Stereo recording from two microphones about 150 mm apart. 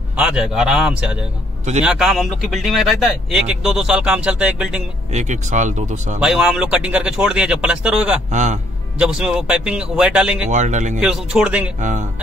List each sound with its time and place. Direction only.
0.1 s speech: 5° right (ahead or behind)
5.1 s speech: 50° right (ahead or behind)
6.1 s speech: 5° right (ahead or behind)
8.3 s speech: 55° right (ahead or behind)
8.9 s speech: 5° right (ahead or behind)
10.5 s speech: 50° right (ahead or behind)
11.0 s speech: 5° right (ahead or behind)
11.8 s speech: 55° right (ahead or behind)